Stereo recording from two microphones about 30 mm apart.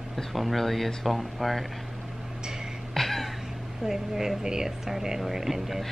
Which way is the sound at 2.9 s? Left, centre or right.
Centre.